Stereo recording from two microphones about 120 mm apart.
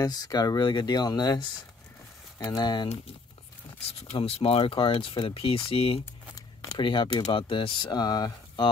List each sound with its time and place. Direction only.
0.0 s speech: 35° left (ahead or behind)
4.1 s speech: 50° left (ahead or behind)
6.3 s a sound: 30° left (ahead or behind)
6.8 s speech: 45° left (ahead or behind)